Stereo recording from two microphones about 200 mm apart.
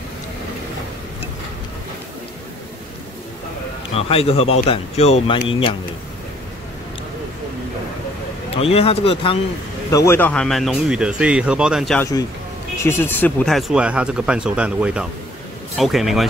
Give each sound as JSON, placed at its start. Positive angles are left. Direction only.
{"t": 3.9, "sound": "speech", "side_deg": 30}
{"t": 8.5, "sound": "speech", "side_deg": 30}
{"t": 9.8, "sound": "speech", "side_deg": 15}
{"t": 12.0, "sound": "speech", "side_deg": 15}